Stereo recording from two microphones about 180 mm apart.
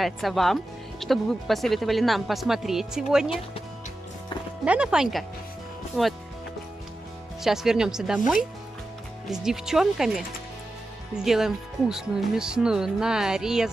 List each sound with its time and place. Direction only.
0.0 s speech: centre (ahead or behind)
4.6 s speech: 5° right (ahead or behind)
7.4 s speech: 5° right (ahead or behind)
9.3 s speech: 5° right (ahead or behind)
11.2 s speech: 5° right (ahead or behind)